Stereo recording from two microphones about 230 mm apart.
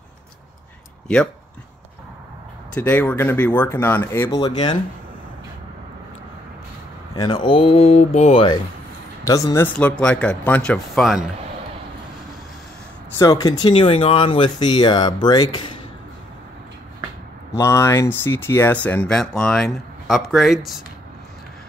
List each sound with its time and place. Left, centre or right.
1.0 s speech: centre
2.7 s speech: centre
7.2 s speech: centre
9.2 s speech: centre
13.2 s speech: centre
17.6 s speech: centre